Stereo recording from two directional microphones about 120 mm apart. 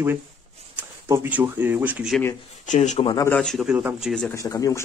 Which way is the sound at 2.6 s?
85° left.